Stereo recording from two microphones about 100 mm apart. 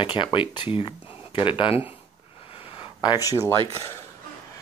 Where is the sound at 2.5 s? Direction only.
70° left (ahead or behind).